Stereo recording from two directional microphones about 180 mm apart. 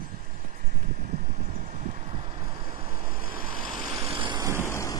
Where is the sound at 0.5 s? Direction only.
45° right (ahead or behind); by 4.1 s 20° right (ahead or behind).